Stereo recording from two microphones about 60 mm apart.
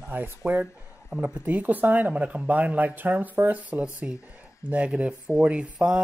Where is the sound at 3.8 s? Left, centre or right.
Centre.